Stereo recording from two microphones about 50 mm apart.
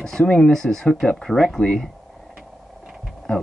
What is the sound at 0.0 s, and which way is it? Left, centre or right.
Speech, centre.